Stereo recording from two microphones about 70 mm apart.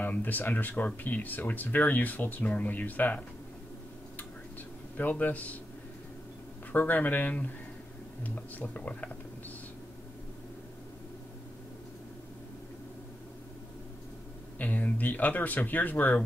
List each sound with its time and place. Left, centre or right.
0.0 s speech: left
4.9 s speech: left
6.7 s speech: left
14.6 s speech: left